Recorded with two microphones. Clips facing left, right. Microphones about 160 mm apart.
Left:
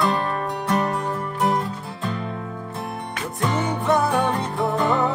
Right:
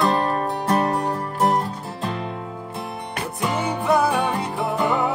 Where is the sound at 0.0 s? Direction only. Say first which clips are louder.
Right 2 dB; 40° right (ahead or behind).